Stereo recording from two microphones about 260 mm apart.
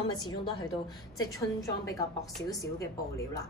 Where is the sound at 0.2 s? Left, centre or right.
Centre.